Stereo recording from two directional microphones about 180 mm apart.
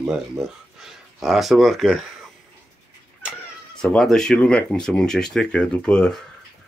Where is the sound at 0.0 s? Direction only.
5° right (ahead or behind).